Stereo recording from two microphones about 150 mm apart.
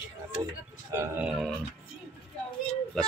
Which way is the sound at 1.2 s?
Centre (ahead or behind).